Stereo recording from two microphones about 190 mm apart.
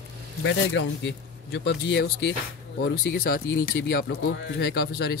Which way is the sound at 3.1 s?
50° left (ahead or behind).